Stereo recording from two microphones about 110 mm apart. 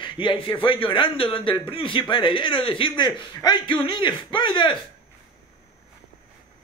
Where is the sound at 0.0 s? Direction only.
50° left (ahead or behind).